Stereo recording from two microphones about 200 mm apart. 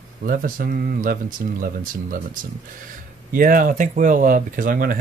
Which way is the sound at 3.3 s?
45° right (ahead or behind).